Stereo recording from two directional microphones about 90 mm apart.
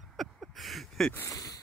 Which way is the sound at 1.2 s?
45° left (ahead or behind).